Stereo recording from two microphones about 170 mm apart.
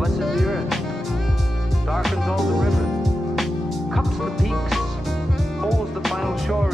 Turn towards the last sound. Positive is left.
turn(degrees=0)  # may be behind; listen again after turning